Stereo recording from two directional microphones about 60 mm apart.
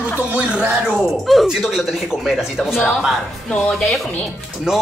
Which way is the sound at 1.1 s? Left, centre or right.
Centre.